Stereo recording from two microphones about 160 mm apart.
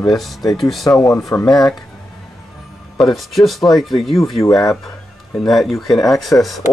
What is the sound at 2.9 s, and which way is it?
Speech, centre (ahead or behind).